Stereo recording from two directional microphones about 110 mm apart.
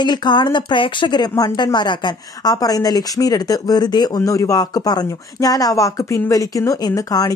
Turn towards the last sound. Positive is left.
turn(degrees=35)  # may be behind; listen again after turning